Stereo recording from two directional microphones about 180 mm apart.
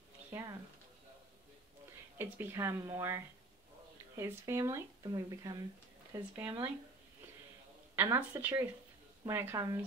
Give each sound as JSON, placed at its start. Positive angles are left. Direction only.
{"t": 0.3, "sound": "speech", "side_deg": -15}
{"t": 2.1, "sound": "speech", "side_deg": -10}
{"t": 7.9, "sound": "speech", "side_deg": -15}